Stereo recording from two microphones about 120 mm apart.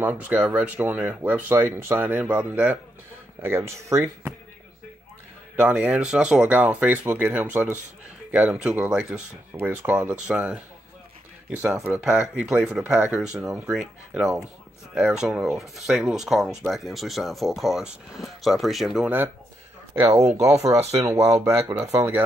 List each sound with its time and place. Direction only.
0.0 s speech: 10° right (ahead or behind)
3.4 s speech: 20° right (ahead or behind)
5.6 s speech: 10° right (ahead or behind)
11.6 s speech: 10° right (ahead or behind)
19.0 s speech: 15° right (ahead or behind)
20.1 s speech: 65° right (ahead or behind)
21.0 s speech: 25° right (ahead or behind)